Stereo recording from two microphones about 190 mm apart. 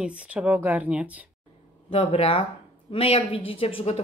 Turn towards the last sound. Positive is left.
turn(degrees=30)  # may be behind; listen again after turning